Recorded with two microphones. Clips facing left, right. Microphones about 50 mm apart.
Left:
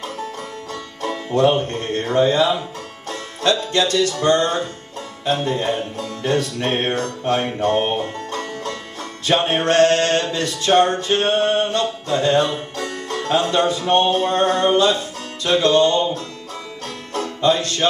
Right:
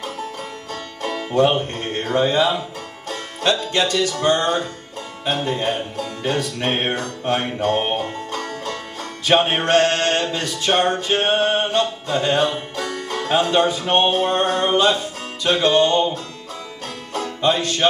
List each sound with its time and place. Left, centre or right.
1.3 s music: right
2.1 s speech: right
3.1 s music: right
5.2 s speech: right
6.6 s music: right
9.2 s music: right
17.1 s music: right